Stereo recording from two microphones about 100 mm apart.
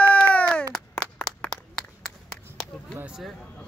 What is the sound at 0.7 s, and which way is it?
Clapping, 10° left (ahead or behind).